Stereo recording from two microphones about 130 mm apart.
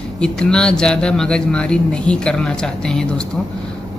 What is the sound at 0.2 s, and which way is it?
Speech, 5° left (ahead or behind).